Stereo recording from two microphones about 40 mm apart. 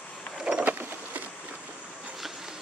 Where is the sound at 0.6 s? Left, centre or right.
Right.